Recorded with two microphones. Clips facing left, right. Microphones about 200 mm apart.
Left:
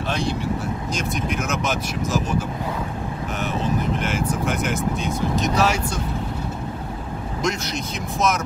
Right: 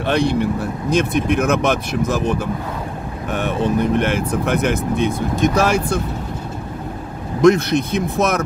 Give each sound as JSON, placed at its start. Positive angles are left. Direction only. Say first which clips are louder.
{"t": 0.0, "sound": "speech", "louder": "right 7 dB", "side_deg": -60}
{"t": 7.4, "sound": "speech", "louder": "right 14 dB", "side_deg": -60}